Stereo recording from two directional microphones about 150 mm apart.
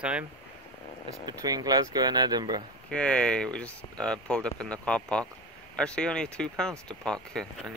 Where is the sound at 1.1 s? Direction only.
25° right (ahead or behind).